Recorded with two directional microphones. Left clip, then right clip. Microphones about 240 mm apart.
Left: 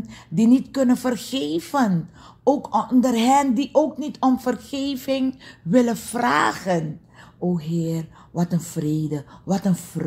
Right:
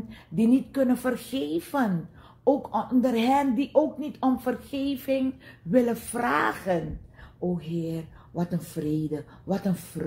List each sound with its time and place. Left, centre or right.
0.4 s a woman's voice: left